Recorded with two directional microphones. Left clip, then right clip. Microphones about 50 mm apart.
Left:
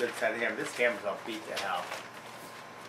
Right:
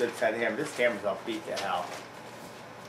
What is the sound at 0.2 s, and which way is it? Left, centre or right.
Speech, centre.